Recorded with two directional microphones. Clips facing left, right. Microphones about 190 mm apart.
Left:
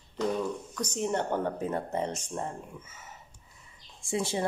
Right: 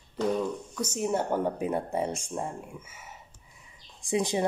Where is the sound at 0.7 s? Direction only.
5° right (ahead or behind).